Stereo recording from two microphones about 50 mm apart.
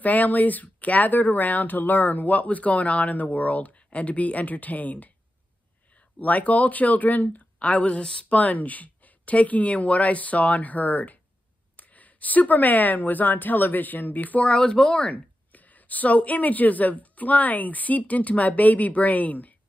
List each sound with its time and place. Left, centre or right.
0.0 s speech: left
6.1 s speech: left